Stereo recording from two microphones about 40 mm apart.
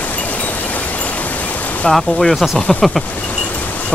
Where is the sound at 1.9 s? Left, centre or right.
Centre.